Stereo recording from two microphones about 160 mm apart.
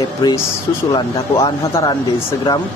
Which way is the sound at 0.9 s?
30° left (ahead or behind).